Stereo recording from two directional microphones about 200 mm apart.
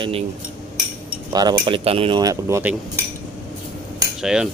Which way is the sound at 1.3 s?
20° right (ahead or behind).